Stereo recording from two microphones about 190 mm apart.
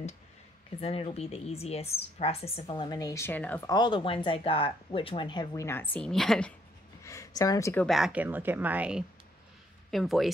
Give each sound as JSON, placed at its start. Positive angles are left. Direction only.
{"t": 0.7, "sound": "speech", "side_deg": 35}
{"t": 3.7, "sound": "speech", "side_deg": 25}
{"t": 7.0, "sound": "a sound", "side_deg": 15}
{"t": 7.8, "sound": "speech", "side_deg": 0}